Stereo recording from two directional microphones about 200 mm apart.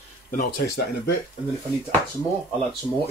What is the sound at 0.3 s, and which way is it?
Speech, 50° left (ahead or behind).